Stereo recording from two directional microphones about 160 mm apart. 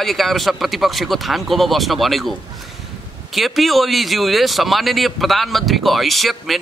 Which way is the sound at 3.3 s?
Centre (ahead or behind).